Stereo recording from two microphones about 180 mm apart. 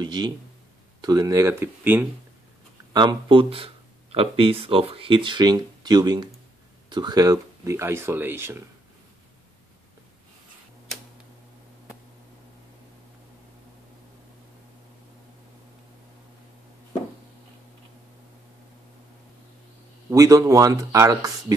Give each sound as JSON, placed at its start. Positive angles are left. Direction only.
{"t": 0.0, "sound": "speech", "side_deg": -25}
{"t": 2.9, "sound": "speech", "side_deg": -25}
{"t": 20.1, "sound": "speech", "side_deg": -20}